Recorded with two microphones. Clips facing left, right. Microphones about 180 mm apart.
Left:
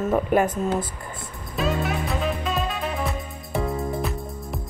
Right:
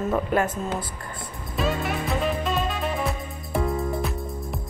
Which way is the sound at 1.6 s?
Centre (ahead or behind).